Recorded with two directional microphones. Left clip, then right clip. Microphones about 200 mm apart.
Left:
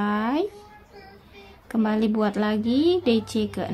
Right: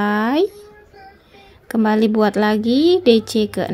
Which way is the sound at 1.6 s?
30° right (ahead or behind).